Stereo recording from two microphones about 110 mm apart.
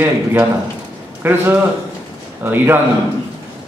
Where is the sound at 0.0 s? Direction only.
20° right (ahead or behind).